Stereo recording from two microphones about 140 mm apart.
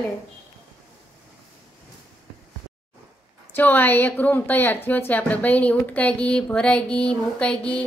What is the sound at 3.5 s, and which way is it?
A woman's voice, 15° left (ahead or behind).